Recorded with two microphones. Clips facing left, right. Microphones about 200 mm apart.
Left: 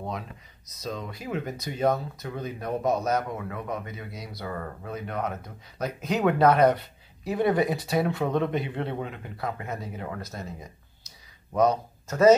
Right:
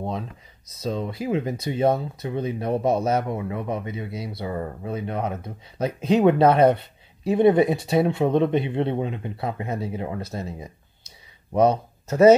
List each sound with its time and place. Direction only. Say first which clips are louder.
0.7 s speech: right 7 dB; 30° right (ahead or behind)